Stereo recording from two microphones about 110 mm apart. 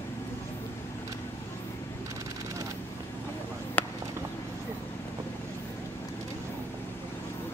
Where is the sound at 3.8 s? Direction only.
15° left (ahead or behind).